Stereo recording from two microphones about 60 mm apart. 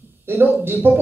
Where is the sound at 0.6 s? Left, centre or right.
Right.